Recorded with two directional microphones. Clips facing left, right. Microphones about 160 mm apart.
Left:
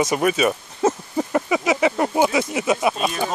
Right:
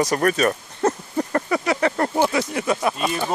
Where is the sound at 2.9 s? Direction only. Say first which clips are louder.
Even; centre (ahead or behind).